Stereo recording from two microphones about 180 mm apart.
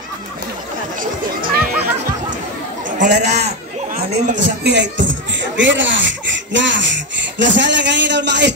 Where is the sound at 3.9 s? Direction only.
60° right (ahead or behind).